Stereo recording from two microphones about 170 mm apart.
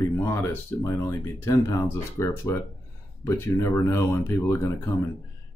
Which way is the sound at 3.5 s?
15° left (ahead or behind).